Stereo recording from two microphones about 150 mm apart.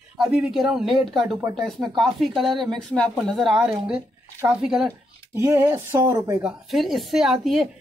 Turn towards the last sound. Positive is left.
turn(degrees=-5)  # may be behind; listen again after turning